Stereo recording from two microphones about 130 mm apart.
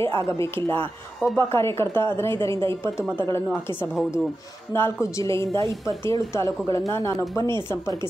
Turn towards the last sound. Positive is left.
turn(degrees=25)  # may be behind; listen again after turning